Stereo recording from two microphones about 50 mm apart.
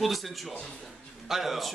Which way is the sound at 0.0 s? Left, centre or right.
Centre.